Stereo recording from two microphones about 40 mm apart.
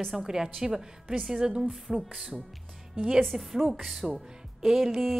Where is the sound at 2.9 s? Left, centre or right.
Right.